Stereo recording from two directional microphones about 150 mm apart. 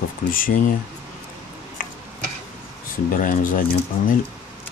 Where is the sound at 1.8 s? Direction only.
65° left (ahead or behind).